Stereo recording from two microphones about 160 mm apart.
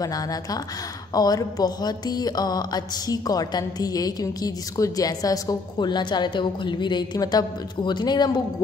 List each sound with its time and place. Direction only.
0.0 s music: 20° left (ahead or behind)